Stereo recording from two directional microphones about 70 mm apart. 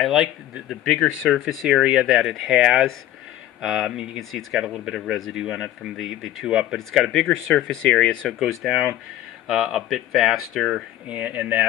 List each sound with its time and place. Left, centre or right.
0.0 s speech: centre
1.7 s speech: centre
7.2 s speech: centre
11.1 s speech: right